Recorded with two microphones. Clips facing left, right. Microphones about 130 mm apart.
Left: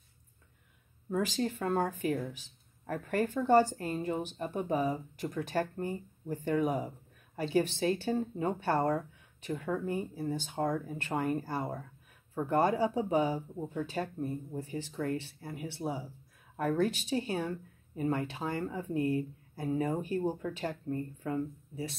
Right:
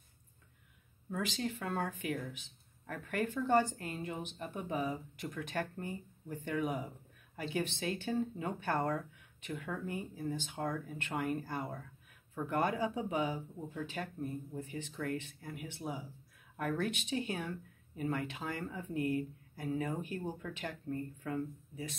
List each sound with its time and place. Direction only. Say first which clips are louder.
1.1 s speech: left 6 dB; 40° left (ahead or behind)